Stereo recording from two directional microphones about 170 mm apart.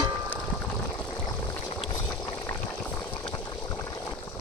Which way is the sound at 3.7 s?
20° left (ahead or behind).